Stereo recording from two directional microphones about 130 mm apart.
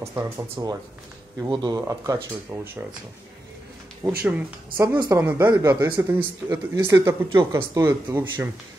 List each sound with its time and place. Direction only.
0.0 s speech: 20° right (ahead or behind)
2.5 s speech: 10° right (ahead or behind)
4.0 s speech: 15° right (ahead or behind)
4.7 s a woman's voice: 35° right (ahead or behind)
5.2 s speech: 15° right (ahead or behind)